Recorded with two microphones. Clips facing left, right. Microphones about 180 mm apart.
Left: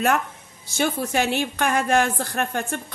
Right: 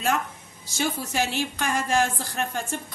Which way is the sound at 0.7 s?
60° left (ahead or behind).